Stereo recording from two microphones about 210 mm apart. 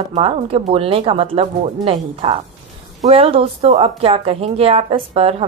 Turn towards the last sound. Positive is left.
turn(degrees=-30)  # may be behind; listen again after turning